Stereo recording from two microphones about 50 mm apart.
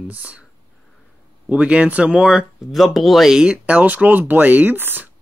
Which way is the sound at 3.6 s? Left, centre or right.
Right.